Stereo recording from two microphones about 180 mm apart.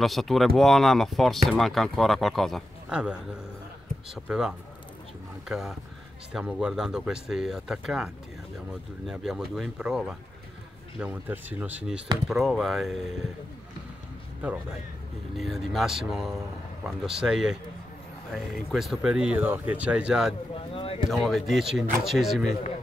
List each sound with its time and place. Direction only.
0.0 s speech: centre (ahead or behind)
15.3 s speech: centre (ahead or behind)
20.5 s speech: 30° left (ahead or behind)
21.1 s speech: centre (ahead or behind)